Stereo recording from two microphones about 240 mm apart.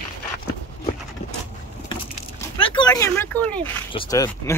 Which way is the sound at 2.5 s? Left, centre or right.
Left.